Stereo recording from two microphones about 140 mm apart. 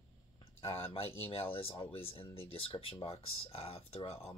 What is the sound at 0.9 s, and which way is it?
Speech, 45° left (ahead or behind).